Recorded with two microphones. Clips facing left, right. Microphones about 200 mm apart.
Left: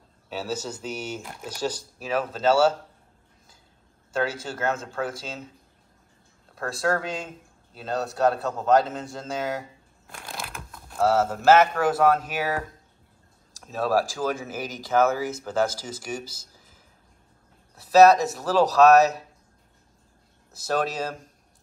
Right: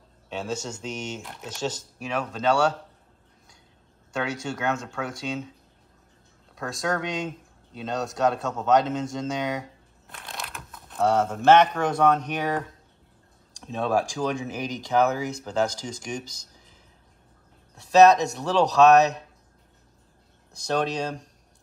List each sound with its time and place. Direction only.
0.3 s speech: 5° left (ahead or behind)
4.1 s speech: centre (ahead or behind)
6.5 s speech: 5° left (ahead or behind)
17.9 s speech: 5° left (ahead or behind)
20.5 s speech: 5° left (ahead or behind)